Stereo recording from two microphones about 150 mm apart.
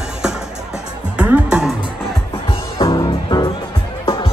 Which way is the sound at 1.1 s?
5° right (ahead or behind).